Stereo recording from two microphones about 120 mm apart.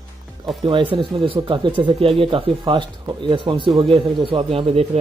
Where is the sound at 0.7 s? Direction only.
45° right (ahead or behind).